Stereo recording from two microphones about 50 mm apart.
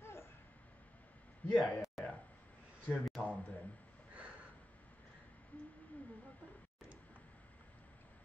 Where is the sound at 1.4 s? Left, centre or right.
Left.